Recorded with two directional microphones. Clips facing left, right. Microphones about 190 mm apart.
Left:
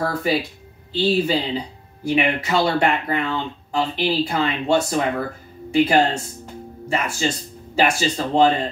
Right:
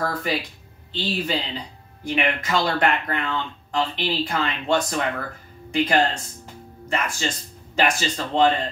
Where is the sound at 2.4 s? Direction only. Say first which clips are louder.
Left 3 dB; 10° left (ahead or behind).